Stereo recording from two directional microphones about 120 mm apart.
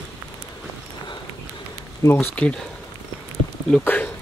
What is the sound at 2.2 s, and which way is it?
Speech, 10° left (ahead or behind).